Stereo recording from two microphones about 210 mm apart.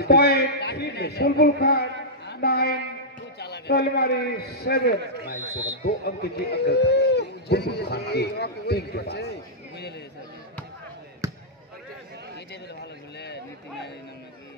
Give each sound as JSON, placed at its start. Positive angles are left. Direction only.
{"t": 0.0, "sound": "a man's voice", "side_deg": 50}
{"t": 11.2, "sound": "basketball bounce", "side_deg": -15}